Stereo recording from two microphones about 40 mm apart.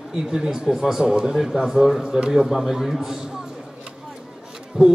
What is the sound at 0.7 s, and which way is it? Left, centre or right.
Speech, centre.